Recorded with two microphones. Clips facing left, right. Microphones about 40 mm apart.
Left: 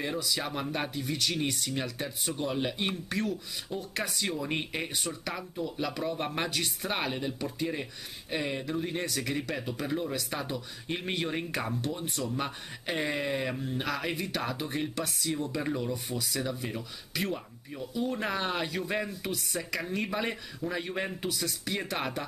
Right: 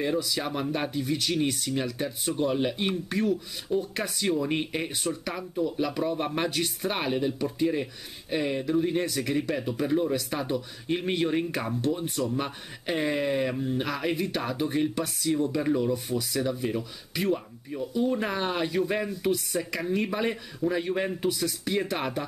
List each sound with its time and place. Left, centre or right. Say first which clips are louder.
0.0 s speech: right 4 dB; centre